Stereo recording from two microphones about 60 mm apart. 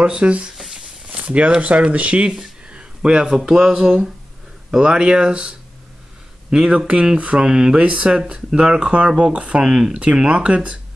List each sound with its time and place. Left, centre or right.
0.0 s speech: centre